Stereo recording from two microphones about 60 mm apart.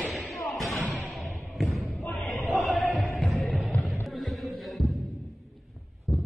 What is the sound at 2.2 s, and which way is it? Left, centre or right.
Music, centre.